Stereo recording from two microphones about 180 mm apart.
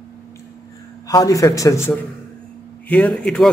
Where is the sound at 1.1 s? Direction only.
20° left (ahead or behind).